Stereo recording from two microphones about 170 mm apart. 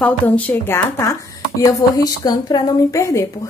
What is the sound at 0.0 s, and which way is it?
A woman's voice, 10° left (ahead or behind).